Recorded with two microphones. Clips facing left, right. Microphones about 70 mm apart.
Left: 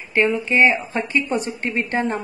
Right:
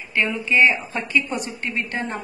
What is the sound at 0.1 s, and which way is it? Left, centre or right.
A woman's voice, left.